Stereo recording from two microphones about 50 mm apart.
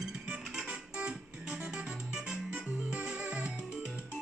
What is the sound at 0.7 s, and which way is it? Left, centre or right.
Organ, right.